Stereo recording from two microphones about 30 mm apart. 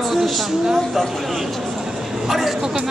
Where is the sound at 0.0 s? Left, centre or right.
Centre.